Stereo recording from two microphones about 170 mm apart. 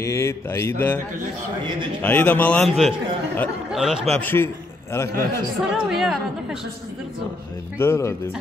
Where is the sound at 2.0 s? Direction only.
10° left (ahead or behind).